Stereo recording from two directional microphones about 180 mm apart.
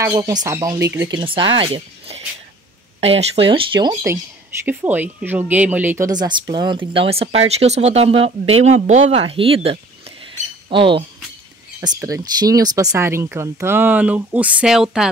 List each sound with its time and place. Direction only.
0.0 s speech: 15° right (ahead or behind)
4.6 s speech: 10° right (ahead or behind)